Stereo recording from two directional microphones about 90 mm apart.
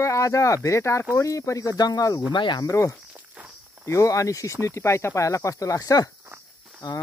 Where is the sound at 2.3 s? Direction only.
60° left (ahead or behind).